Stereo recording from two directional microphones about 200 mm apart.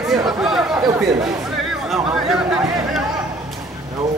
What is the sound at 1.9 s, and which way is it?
Speech, centre (ahead or behind).